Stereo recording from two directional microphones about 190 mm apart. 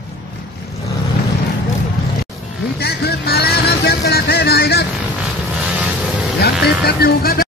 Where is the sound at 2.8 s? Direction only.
55° left (ahead or behind).